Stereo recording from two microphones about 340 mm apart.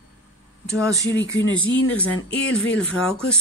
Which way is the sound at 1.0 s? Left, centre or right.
Left.